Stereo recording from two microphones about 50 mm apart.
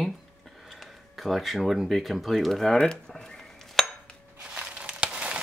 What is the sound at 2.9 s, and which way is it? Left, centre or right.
Dishes, centre.